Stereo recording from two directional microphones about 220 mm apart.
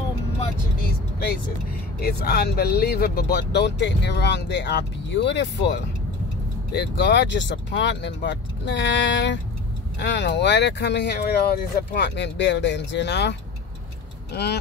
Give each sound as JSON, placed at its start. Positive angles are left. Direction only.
{"t": 2.0, "sound": "speech", "side_deg": 45}